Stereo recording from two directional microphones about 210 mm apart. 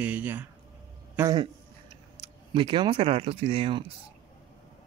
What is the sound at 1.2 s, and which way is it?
Speech, 20° right (ahead or behind).